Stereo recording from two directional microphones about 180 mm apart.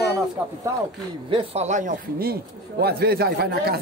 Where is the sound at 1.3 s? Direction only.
35° right (ahead or behind).